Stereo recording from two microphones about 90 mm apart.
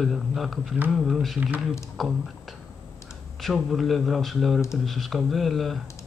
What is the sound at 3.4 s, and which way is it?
Speech, centre (ahead or behind).